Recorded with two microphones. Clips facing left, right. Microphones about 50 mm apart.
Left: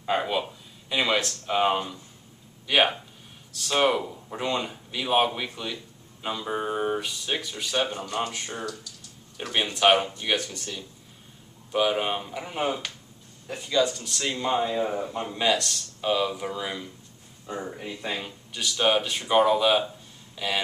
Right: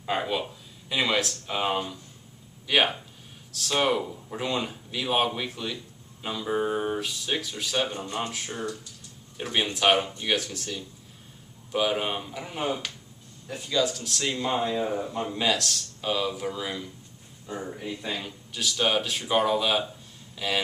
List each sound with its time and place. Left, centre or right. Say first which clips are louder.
0.0 s speech: left 2 dB; centre
8.0 s speech: left 2 dB; right
8.3 s a man's voice: even; centre